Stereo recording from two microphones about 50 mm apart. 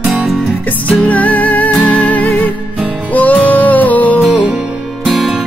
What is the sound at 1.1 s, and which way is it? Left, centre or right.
Music, left.